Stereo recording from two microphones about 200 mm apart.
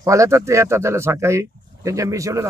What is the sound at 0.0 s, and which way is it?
Speech, 15° right (ahead or behind).